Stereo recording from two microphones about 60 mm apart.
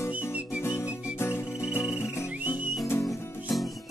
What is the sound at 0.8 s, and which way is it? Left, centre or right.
Music, left.